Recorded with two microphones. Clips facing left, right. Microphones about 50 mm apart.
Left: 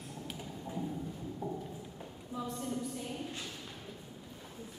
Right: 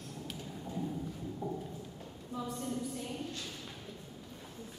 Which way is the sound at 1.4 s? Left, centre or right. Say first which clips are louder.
Even; centre.